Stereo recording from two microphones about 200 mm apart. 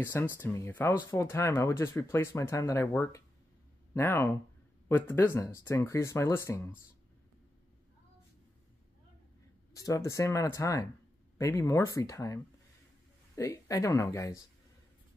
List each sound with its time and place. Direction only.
0.0 s speech: 10° left (ahead or behind)
9.8 s speech: 15° left (ahead or behind)
13.4 s speech: 15° left (ahead or behind)